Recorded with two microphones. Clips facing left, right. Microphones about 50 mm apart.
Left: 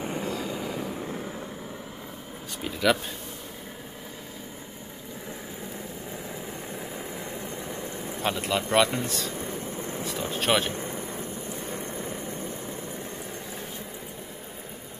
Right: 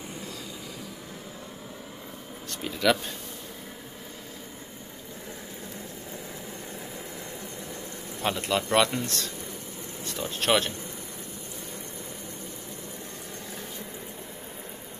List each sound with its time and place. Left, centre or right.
0.5 s train: left
2.6 s speech: centre
7.3 s vehicle: left
8.2 s speech: centre
9.4 s vehicle: left
10.3 s speech: centre
10.7 s a sound: left
11.7 s vehicle: left